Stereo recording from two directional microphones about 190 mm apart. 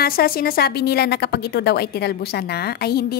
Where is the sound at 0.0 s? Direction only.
50° left (ahead or behind).